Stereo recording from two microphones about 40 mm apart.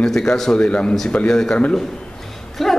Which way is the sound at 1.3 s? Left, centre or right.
Centre.